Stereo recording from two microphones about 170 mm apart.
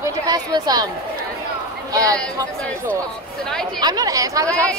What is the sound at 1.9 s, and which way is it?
Speech, 20° right (ahead or behind).